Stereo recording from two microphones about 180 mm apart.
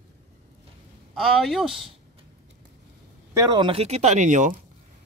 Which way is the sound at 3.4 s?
25° right (ahead or behind).